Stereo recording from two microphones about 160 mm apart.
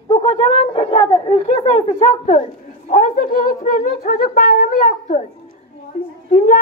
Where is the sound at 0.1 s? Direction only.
40° left (ahead or behind).